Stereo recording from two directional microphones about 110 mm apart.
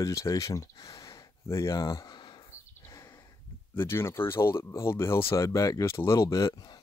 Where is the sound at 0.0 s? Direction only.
30° left (ahead or behind).